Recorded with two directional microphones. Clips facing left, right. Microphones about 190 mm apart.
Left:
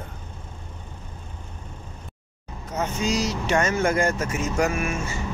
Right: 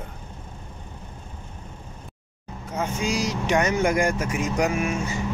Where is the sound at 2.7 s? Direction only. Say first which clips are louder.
Left 1 dB; 10° right (ahead or behind).